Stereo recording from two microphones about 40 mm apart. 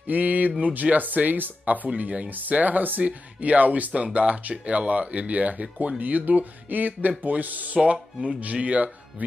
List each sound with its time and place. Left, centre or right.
0.0 s speech: right
2.0 s speech: right
2.2 s speech: right
7.8 s speech: right